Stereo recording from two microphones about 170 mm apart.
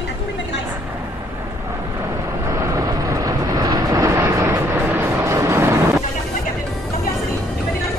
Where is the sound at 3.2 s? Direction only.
20° right (ahead or behind).